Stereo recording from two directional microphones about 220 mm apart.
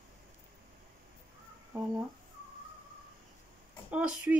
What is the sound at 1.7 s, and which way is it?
Speech, 10° right (ahead or behind).